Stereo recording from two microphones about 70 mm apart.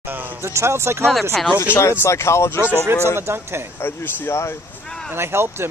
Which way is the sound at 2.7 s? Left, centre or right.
Right.